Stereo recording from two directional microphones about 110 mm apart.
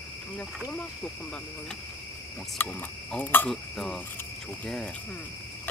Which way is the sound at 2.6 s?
15° left (ahead or behind).